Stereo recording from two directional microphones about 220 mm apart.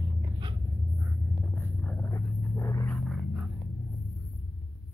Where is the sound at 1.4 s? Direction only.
5° left (ahead or behind).